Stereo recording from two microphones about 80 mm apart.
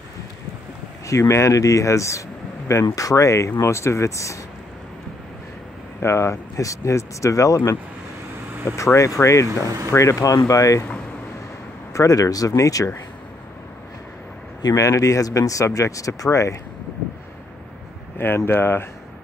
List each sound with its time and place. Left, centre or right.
1.0 s speech: left
5.9 s speech: left
8.7 s a man's voice: left
11.9 s a man's voice: left
14.6 s a man's voice: left
18.1 s speech: left